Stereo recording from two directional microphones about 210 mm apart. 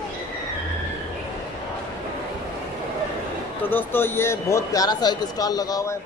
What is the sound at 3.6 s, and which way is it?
Speech, 10° left (ahead or behind).